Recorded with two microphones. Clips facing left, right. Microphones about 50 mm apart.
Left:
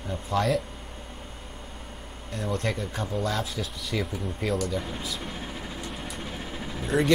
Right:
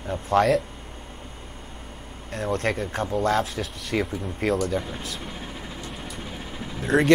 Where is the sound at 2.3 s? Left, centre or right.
Right.